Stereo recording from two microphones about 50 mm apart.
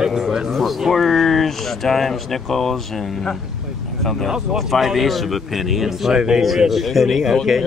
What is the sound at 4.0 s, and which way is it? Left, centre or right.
A man's voice, centre.